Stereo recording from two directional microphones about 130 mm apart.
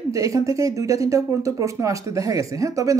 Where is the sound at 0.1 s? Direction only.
25° right (ahead or behind).